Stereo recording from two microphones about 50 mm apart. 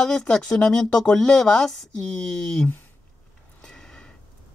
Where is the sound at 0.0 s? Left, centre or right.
Centre.